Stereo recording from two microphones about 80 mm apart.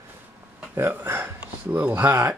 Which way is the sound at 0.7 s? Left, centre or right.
Right.